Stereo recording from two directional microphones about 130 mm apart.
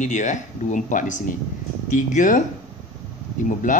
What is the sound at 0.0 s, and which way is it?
Speech, 70° left (ahead or behind).